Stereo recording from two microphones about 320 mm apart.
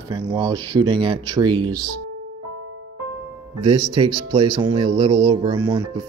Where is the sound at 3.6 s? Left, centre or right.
Centre.